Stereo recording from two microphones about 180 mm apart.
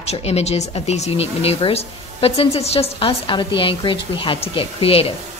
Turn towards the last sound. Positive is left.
turn(degrees=30)  # may be behind; listen again after turning